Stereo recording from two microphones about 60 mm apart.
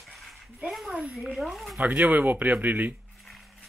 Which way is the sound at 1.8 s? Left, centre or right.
Right.